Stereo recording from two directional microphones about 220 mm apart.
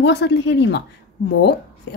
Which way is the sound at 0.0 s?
50° left (ahead or behind).